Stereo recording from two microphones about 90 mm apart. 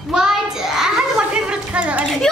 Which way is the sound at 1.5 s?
15° right (ahead or behind).